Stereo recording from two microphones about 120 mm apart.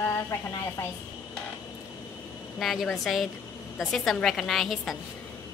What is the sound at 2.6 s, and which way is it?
A woman's voice, centre (ahead or behind).